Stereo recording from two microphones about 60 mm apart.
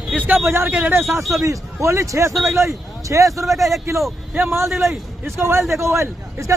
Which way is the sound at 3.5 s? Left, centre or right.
Centre.